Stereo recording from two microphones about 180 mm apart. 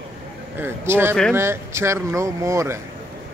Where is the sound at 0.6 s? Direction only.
10° right (ahead or behind).